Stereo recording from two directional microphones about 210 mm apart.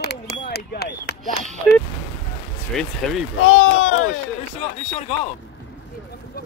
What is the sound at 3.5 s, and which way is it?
Speech, 70° left (ahead or behind).